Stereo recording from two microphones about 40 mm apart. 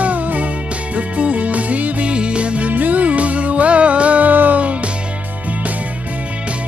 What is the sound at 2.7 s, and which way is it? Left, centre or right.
Music, right.